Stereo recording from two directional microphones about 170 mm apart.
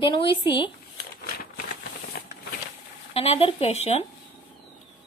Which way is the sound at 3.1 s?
35° left (ahead or behind).